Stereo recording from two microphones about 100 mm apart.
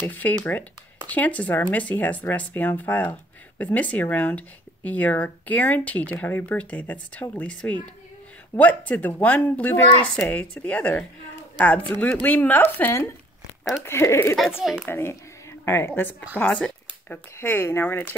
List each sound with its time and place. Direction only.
0.0 s speech: 20° left (ahead or behind)
14.6 s a child's voice: centre (ahead or behind)
14.9 s speech: 25° left (ahead or behind)
16.3 s a sound: 10° left (ahead or behind)
17.4 s speech: 25° left (ahead or behind)